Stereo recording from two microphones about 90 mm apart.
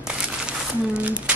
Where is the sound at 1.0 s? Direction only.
15° right (ahead or behind).